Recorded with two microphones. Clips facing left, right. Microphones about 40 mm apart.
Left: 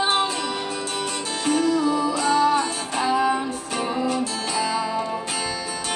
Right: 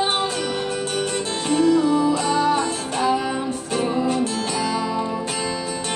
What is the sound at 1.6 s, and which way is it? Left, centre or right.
Music, right.